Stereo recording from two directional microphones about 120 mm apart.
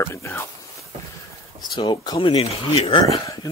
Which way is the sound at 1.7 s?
35° left (ahead or behind).